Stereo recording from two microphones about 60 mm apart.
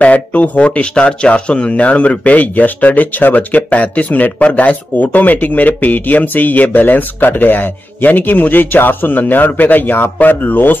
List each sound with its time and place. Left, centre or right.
0.0 s speech: left